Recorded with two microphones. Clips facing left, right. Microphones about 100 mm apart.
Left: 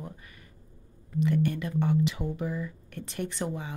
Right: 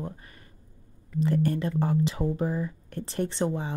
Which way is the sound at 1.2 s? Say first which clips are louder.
Right 1 dB; 35° right (ahead or behind).